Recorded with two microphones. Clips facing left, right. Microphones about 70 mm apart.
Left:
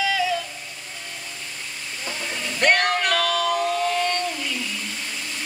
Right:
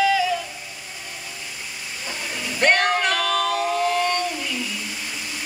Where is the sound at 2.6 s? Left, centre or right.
Centre.